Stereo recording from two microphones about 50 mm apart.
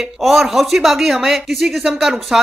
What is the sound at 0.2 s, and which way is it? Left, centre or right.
Speech, centre.